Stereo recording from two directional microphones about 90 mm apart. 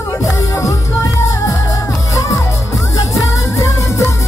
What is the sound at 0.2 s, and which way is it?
Music, 35° left (ahead or behind).